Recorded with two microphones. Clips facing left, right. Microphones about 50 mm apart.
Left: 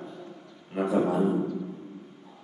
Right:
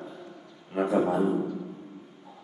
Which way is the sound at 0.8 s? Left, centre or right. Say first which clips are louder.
Even; centre.